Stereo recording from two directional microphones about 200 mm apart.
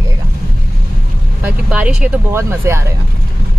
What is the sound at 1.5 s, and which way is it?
Speech, 5° right (ahead or behind).